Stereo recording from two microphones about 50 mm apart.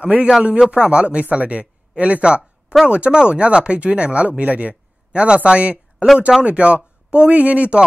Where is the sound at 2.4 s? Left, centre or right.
Centre.